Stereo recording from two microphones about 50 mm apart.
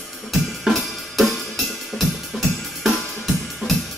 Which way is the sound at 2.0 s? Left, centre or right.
Centre.